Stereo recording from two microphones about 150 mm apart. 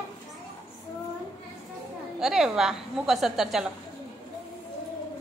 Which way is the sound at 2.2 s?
5° right (ahead or behind).